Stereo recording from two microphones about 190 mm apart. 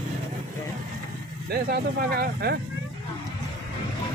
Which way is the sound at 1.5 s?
55° right (ahead or behind).